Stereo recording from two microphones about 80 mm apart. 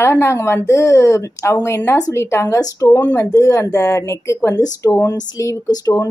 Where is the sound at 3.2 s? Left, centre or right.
Left.